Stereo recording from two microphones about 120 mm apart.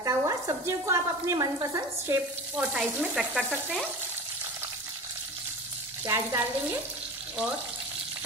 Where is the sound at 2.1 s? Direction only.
15° right (ahead or behind).